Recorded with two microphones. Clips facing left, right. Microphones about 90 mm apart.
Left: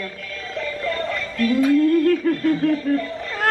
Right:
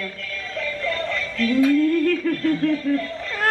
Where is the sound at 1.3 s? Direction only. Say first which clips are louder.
Left 2 dB; 15° left (ahead or behind).